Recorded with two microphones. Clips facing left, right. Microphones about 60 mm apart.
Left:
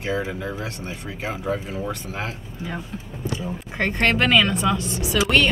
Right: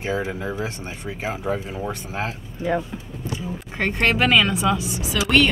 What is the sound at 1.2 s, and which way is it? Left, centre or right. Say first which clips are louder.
Speech: even; centre.